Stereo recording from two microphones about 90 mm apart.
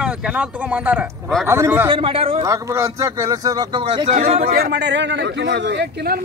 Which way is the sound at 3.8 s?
90° right.